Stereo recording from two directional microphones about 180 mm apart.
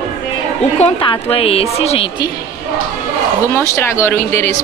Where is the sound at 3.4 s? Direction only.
15° left (ahead or behind).